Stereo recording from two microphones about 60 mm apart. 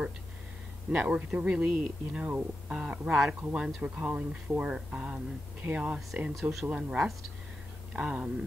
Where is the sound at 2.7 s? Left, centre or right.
Centre.